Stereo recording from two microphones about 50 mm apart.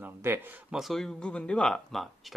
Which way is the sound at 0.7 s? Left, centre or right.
Centre.